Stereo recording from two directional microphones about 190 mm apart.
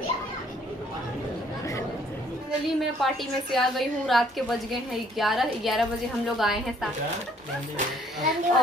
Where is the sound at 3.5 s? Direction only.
Centre (ahead or behind).